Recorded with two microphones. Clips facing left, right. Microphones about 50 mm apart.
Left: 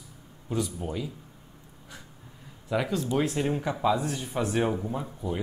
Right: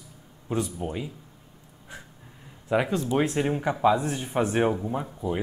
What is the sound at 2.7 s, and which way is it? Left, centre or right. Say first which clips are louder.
Speech: right 3 dB; right.